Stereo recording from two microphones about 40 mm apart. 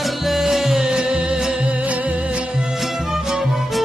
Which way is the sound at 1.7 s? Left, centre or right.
Right.